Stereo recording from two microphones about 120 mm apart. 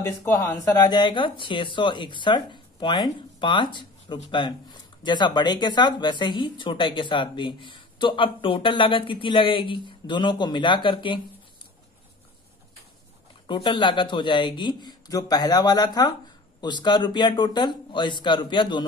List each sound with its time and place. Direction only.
0.0 s speech: 25° left (ahead or behind); by 11.1 s 45° left (ahead or behind)
13.5 s speech: 45° left (ahead or behind)